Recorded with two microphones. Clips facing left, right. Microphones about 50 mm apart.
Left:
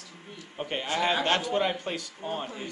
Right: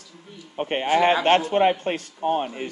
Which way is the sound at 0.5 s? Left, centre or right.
Right.